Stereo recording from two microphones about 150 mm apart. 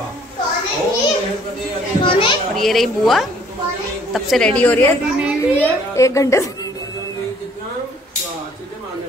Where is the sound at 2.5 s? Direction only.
Centre (ahead or behind); by 6.4 s 20° left (ahead or behind).